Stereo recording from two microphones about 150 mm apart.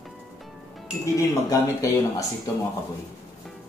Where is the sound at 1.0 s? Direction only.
20° left (ahead or behind).